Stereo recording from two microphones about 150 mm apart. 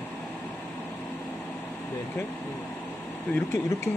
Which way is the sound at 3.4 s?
15° left (ahead or behind).